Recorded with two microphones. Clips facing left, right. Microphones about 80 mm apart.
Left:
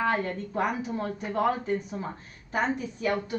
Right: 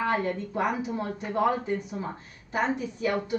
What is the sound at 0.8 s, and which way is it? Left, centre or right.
Speech, centre.